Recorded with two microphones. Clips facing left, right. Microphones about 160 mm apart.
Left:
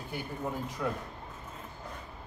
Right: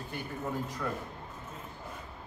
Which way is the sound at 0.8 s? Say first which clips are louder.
Left 4 dB; 10° left (ahead or behind).